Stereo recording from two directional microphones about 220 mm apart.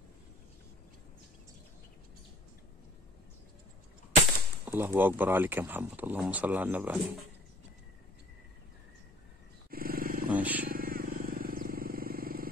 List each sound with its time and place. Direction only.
4.6 s speech: 10° right (ahead or behind)
9.7 s wild animals: 40° right (ahead or behind)
10.3 s vehicle: 5° right (ahead or behind)
10.7 s vehicle: 40° right (ahead or behind)